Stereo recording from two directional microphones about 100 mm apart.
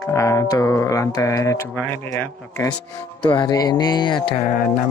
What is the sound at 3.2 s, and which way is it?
Speech, 55° left (ahead or behind).